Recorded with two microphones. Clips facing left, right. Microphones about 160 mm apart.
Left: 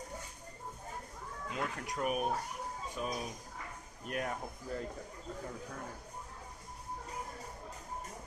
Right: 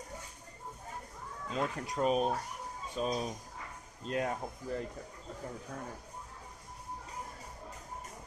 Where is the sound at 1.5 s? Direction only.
25° right (ahead or behind).